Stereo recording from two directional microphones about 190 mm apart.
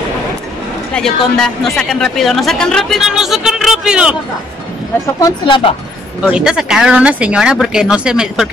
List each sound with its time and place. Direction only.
0.9 s speech: 5° left (ahead or behind)
5.2 s speech: 25° left (ahead or behind)
6.2 s speech: 5° right (ahead or behind)